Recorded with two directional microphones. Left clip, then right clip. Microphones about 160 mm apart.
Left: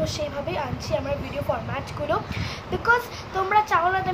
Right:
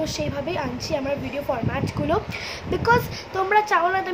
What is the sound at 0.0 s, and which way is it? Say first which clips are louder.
Speech: right 1 dB; 20° right (ahead or behind).